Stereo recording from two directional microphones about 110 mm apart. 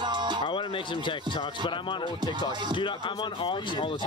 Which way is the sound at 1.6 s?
45° left (ahead or behind).